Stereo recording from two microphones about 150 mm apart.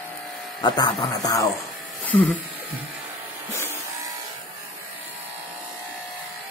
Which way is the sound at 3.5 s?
20° left (ahead or behind).